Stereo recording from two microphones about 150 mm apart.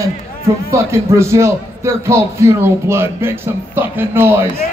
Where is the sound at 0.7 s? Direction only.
20° right (ahead or behind).